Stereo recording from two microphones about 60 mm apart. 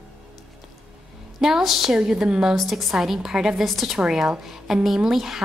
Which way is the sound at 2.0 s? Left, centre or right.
Centre.